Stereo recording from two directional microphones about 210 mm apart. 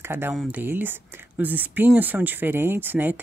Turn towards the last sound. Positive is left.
turn(degrees=-10)  # may be behind; listen again after turning